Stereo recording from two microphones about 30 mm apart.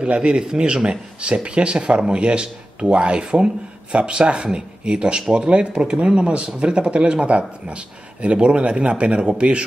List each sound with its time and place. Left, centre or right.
0.0 s speech: right
1.3 s speech: right